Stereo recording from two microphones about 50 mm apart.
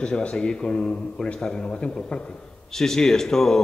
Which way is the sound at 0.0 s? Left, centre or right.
Left.